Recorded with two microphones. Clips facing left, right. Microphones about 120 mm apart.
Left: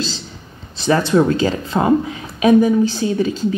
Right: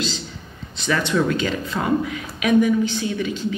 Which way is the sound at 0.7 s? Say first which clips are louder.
Left 6 dB; 35° left (ahead or behind).